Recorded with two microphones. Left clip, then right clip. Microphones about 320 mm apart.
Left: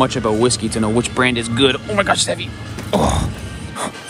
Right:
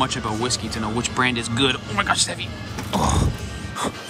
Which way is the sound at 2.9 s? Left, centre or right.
Centre.